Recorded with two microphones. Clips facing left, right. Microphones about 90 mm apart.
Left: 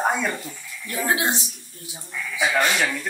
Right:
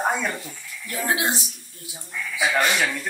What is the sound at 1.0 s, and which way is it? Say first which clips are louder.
Speech: left 1 dB; 30° left (ahead or behind).